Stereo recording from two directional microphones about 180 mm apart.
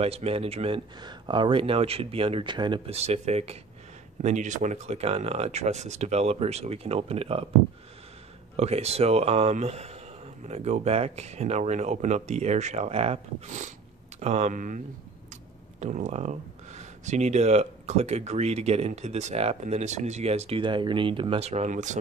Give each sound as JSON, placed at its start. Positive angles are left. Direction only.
{"t": 0.0, "sound": "speech", "side_deg": -35}
{"t": 8.5, "sound": "speech", "side_deg": -35}
{"t": 15.8, "sound": "speech", "side_deg": -40}